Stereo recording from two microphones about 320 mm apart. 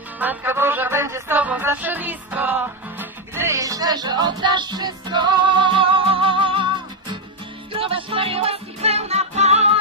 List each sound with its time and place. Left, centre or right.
0.2 s music: centre